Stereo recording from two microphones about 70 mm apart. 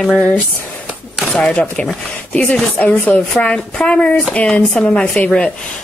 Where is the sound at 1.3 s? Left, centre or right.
Centre.